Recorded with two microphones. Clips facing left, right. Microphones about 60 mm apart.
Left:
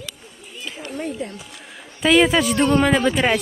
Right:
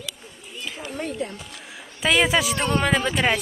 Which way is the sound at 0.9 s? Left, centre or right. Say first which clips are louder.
Left 1 dB; right.